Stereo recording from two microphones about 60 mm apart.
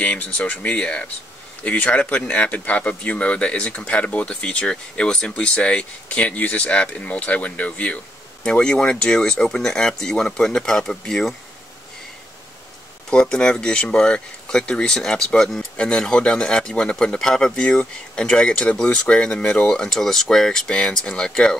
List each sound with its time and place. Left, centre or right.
0.0 s speech: left
13.1 s speech: centre